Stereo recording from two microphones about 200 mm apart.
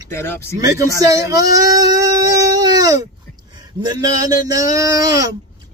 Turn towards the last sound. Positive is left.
turn(degrees=-15)  # may be behind; listen again after turning